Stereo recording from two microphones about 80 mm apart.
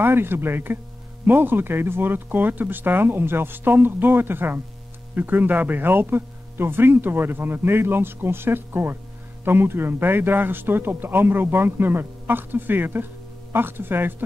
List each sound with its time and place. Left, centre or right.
0.0 s speech: right